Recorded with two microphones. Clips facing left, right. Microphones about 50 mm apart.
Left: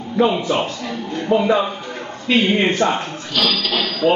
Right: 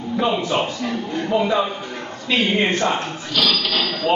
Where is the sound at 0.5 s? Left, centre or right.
Centre.